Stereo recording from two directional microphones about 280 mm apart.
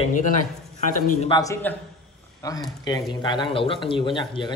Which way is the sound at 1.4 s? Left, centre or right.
Centre.